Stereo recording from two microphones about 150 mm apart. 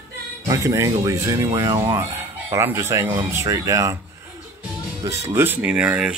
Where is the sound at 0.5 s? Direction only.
20° right (ahead or behind).